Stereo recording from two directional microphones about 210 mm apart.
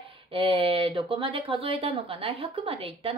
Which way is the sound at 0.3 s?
25° right (ahead or behind).